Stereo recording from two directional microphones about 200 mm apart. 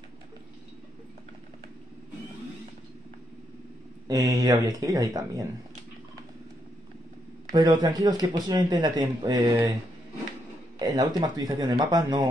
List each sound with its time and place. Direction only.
4.1 s speech: 20° right (ahead or behind)
7.5 s speech: 20° right (ahead or behind)
10.8 s speech: 20° right (ahead or behind)